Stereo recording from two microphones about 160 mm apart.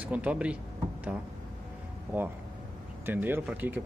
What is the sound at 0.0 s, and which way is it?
Speech, 10° right (ahead or behind).